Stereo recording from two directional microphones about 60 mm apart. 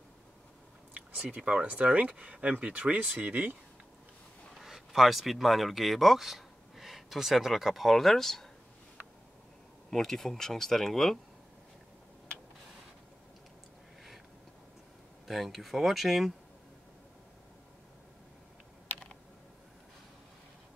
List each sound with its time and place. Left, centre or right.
0.9 s speech: right
4.6 s speech: centre
9.8 s speech: centre
15.2 s speech: centre